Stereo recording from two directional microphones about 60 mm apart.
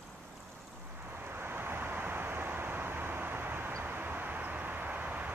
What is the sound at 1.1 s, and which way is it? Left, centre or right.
Vehicle, right.